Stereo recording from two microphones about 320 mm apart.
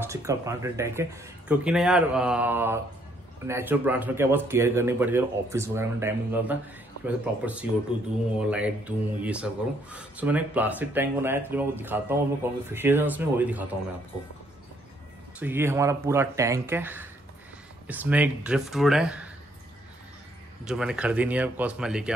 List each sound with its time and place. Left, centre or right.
0.0 s speech: centre
15.3 s speech: centre
20.6 s speech: centre